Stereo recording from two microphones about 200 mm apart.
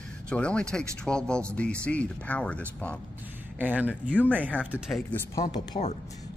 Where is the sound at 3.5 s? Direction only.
10° right (ahead or behind).